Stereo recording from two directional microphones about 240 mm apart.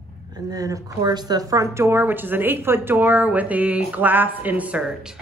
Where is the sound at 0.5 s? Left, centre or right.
Centre.